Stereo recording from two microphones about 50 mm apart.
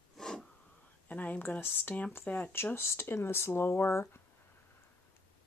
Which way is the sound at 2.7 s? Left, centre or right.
Left.